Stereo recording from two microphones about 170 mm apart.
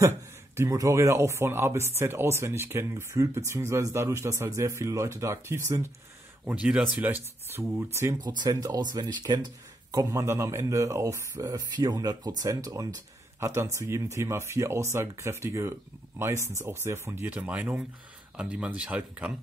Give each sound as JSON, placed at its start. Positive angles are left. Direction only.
{"t": 0.6, "sound": "speech", "side_deg": -20}